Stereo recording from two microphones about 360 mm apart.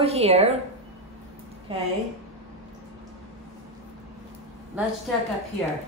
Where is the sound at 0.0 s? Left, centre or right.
Centre.